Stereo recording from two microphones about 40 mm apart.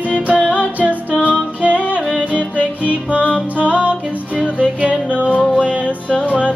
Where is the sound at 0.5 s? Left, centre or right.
Right.